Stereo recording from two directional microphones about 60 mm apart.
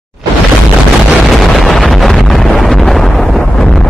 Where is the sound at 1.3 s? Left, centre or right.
Centre.